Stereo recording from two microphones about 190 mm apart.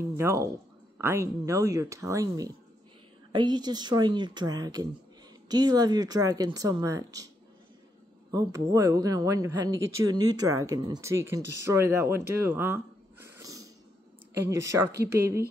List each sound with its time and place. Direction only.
0.0 s speech: 15° right (ahead or behind)
8.3 s speech: 20° right (ahead or behind)